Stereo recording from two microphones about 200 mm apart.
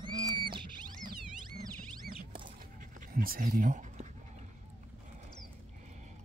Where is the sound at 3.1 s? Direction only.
45° right (ahead or behind).